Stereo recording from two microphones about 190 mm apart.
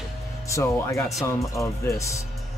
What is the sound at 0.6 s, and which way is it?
Speech, 15° left (ahead or behind).